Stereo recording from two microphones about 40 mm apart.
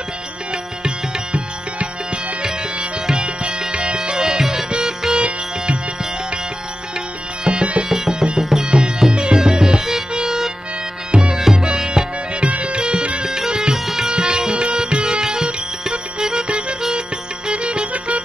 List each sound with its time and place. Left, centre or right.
2.4 s tabla: right
4.6 s music: right
7.4 s music: right
7.9 s music: centre
8.6 s music: right
12.4 s music: right
13.2 s music: centre
16.4 s music: right